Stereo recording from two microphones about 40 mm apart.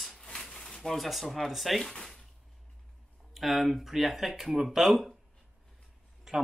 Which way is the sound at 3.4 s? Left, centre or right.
Centre.